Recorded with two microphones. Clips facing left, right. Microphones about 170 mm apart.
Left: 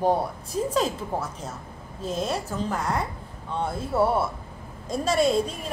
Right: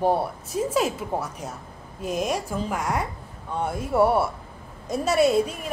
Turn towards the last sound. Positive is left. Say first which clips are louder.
# right 2 dB
turn(degrees=-10)  # may be behind; listen again after turning